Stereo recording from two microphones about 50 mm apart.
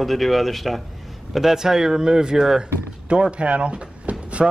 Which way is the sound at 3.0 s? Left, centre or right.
Right.